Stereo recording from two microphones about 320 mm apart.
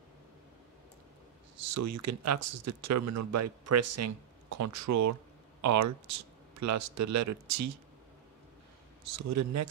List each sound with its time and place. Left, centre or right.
1.7 s speech: right
9.0 s speech: right